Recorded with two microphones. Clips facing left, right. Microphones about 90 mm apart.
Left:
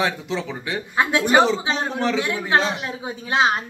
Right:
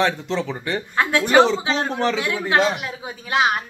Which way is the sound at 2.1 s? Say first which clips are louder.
Even; 25° left (ahead or behind).